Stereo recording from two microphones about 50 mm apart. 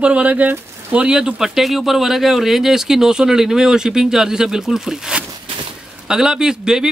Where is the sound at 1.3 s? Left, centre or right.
Centre.